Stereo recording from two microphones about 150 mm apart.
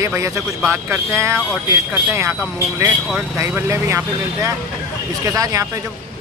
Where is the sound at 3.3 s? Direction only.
20° right (ahead or behind).